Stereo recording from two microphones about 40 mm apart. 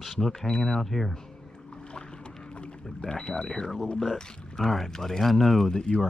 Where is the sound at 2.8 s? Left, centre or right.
Centre.